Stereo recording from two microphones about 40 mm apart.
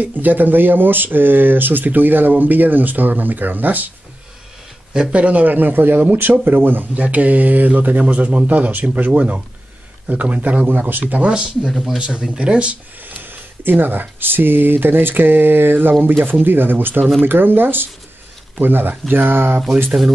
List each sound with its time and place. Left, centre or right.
0.0 s speech: right
5.1 s speech: right
6.9 s speech: right
10.2 s speech: right
11.2 s speech: right
11.8 s speech: centre
12.1 s speech: right
13.0 s speech: right